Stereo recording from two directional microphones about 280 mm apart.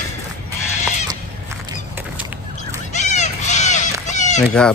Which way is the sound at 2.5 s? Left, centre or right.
Left.